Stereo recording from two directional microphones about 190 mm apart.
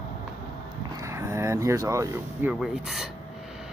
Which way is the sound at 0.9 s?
15° right (ahead or behind).